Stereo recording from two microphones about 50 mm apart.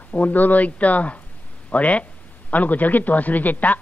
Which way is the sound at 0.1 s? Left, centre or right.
Left.